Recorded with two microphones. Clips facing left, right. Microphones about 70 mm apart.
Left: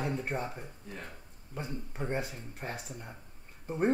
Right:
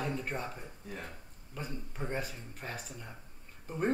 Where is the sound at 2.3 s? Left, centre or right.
Left.